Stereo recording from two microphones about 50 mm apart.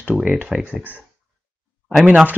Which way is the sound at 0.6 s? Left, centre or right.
Right.